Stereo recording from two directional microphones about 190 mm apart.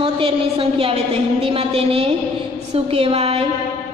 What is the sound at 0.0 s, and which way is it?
A woman's voice, 30° right (ahead or behind).